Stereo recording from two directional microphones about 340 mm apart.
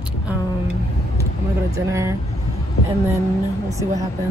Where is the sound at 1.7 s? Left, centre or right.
Centre.